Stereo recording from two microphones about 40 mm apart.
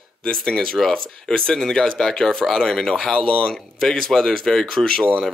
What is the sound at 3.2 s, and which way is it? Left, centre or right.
Speech, left.